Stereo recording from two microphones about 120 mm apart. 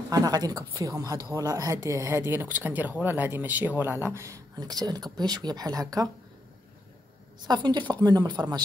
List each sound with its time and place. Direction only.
0.1 s speech: 30° right (ahead or behind)
7.4 s speech: 35° right (ahead or behind)